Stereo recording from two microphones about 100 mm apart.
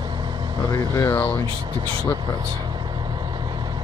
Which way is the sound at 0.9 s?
30° left (ahead or behind).